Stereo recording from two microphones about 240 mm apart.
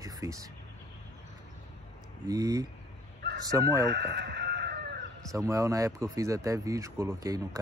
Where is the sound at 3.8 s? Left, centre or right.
Right.